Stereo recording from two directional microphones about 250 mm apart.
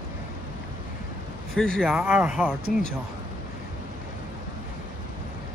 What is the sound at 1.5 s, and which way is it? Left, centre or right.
Speech, centre.